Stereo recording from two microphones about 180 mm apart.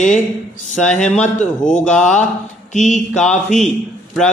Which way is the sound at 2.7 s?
40° left (ahead or behind).